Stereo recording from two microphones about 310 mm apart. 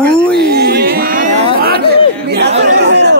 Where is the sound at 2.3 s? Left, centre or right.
Right.